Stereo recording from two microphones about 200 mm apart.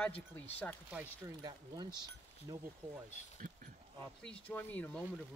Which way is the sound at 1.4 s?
20° right (ahead or behind).